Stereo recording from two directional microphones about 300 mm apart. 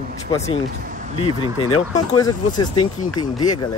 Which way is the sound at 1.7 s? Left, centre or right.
Centre.